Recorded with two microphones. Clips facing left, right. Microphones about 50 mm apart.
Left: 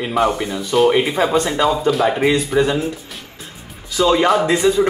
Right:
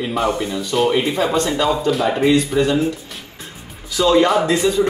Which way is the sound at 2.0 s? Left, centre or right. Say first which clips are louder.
Right 1 dB; centre.